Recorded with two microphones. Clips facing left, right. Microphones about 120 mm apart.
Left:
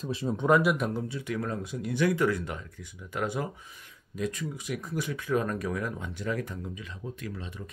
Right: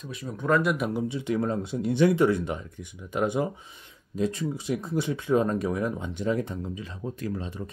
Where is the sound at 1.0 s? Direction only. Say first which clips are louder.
Right 6 dB; 25° right (ahead or behind).